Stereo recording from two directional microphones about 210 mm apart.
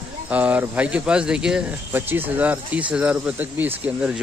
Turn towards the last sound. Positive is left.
turn(degrees=-5)  # may be behind; listen again after turning